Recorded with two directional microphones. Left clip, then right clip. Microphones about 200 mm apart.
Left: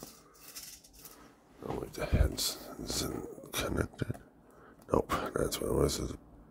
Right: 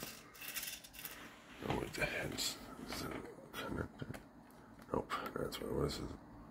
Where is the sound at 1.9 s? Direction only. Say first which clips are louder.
Left 3 dB; 20° left (ahead or behind).